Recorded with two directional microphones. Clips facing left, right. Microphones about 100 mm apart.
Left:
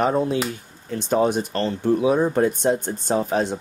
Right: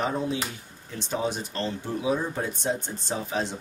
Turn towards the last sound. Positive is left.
turn(degrees=50)  # may be behind; listen again after turning